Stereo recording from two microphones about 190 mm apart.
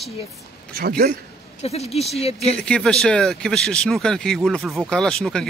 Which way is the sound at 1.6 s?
35° left (ahead or behind).